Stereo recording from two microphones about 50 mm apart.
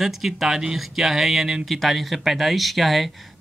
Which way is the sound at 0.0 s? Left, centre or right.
Centre.